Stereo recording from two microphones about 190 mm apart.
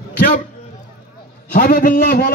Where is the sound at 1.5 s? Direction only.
50° left (ahead or behind).